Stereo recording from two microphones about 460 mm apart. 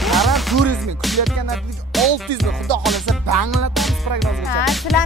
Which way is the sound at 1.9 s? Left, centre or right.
Centre.